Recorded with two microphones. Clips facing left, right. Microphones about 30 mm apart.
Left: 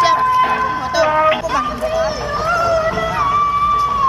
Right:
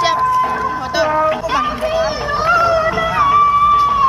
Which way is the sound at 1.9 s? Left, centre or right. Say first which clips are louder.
Right 1 dB; right.